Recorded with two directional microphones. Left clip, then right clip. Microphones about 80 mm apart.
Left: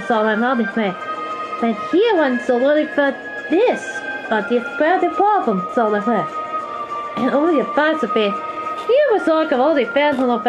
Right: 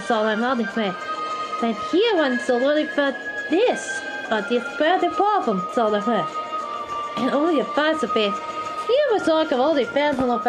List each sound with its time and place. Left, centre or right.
0.1 s a woman's voice: centre